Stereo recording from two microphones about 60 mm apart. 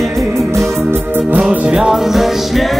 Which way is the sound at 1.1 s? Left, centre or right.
Right.